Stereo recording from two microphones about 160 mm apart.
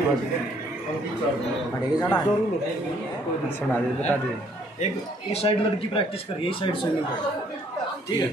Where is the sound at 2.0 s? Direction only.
5° left (ahead or behind).